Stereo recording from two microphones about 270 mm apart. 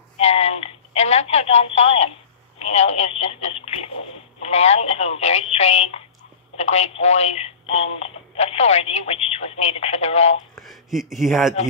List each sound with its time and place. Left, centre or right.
0.2 s telephone: left
2.6 s speech: left
10.5 s speech: centre